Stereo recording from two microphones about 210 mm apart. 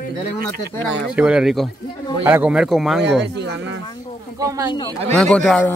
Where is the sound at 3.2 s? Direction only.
55° right (ahead or behind).